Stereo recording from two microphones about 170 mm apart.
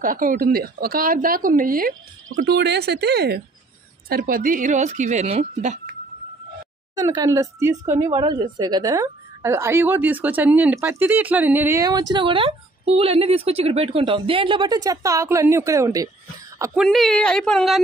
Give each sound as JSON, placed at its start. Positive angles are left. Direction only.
{"t": 0.0, "sound": "speech", "side_deg": -55}
{"t": 4.1, "sound": "speech", "side_deg": -55}
{"t": 7.0, "sound": "a woman's voice", "side_deg": -20}
{"t": 16.7, "sound": "a woman's voice", "side_deg": 0}